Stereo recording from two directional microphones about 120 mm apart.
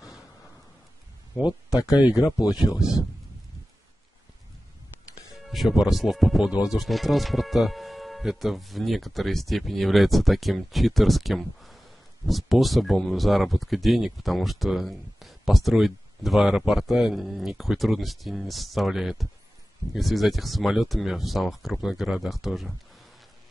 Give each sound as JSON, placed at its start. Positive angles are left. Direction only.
{"t": 1.7, "sound": "speech", "side_deg": 30}
{"t": 5.3, "sound": "speech", "side_deg": 0}